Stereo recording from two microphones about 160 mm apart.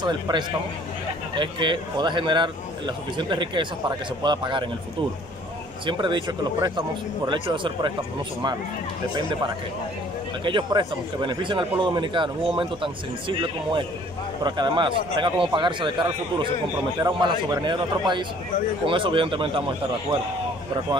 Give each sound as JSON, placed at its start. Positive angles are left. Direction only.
{"t": 0.0, "sound": "a man's voice", "side_deg": -30}
{"t": 5.9, "sound": "a man's voice", "side_deg": -30}
{"t": 10.4, "sound": "a man's voice", "side_deg": -30}
{"t": 14.4, "sound": "a man's voice", "side_deg": -30}